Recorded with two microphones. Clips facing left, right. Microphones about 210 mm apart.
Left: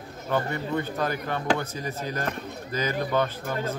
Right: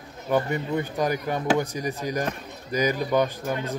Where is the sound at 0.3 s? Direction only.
15° right (ahead or behind).